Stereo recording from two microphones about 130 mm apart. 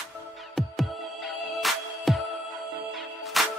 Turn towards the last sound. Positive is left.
turn(degrees=0)  # may be behind; listen again after turning